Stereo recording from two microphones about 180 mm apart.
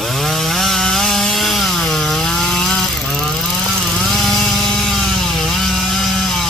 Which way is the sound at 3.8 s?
Centre (ahead or behind).